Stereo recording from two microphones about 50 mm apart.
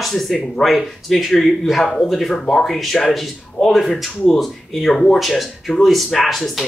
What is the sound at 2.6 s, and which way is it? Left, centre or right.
Speech, centre.